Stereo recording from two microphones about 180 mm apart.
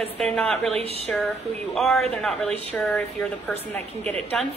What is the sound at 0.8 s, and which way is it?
Speech, 35° right (ahead or behind).